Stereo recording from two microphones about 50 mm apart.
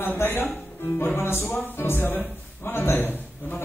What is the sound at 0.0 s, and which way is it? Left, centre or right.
Speech, left.